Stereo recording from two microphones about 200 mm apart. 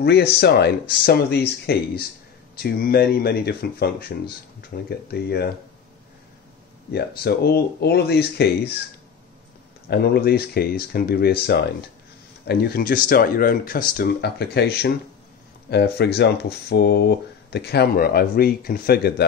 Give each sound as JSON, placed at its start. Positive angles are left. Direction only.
{"t": 0.0, "sound": "speech", "side_deg": 55}
{"t": 6.9, "sound": "speech", "side_deg": 55}
{"t": 9.8, "sound": "speech", "side_deg": 50}